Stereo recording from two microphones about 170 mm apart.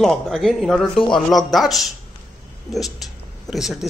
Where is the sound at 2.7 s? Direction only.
Centre (ahead or behind).